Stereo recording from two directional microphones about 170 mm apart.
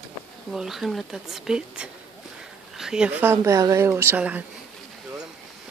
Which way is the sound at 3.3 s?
15° right (ahead or behind).